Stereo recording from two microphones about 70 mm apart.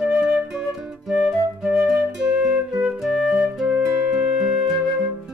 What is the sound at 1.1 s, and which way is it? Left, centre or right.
Music, centre.